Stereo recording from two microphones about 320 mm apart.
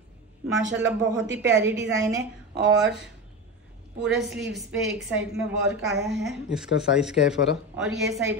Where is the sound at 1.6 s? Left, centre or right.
Centre.